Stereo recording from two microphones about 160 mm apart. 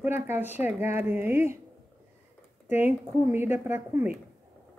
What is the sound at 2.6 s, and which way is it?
A woman's voice, 15° right (ahead or behind).